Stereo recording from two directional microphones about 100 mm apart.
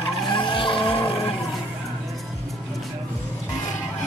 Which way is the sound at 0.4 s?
55° left (ahead or behind).